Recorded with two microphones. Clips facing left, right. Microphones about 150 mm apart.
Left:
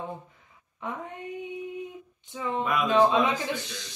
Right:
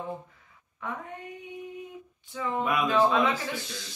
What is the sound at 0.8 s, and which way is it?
Speech, 20° left (ahead or behind).